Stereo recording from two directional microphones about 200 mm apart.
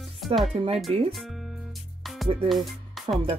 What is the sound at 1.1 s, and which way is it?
Speech, centre (ahead or behind).